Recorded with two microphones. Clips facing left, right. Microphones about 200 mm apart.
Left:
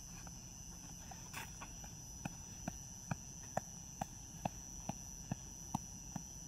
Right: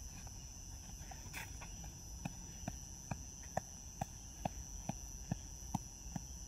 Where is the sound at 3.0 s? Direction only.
10° right (ahead or behind).